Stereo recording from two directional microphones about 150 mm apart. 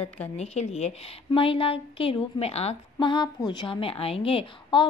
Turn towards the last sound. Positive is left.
turn(degrees=35)  # may be behind; listen again after turning